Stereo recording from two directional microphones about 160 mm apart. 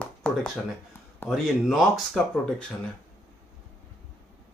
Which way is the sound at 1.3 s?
Centre (ahead or behind).